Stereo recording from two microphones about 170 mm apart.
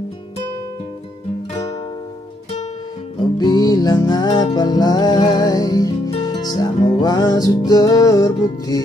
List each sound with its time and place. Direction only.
3.3 s music: 25° left (ahead or behind)